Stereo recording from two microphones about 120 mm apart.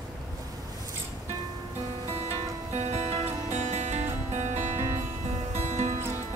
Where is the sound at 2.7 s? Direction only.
65° right (ahead or behind).